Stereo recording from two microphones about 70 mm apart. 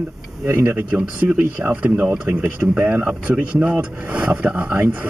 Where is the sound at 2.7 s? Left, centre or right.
Centre.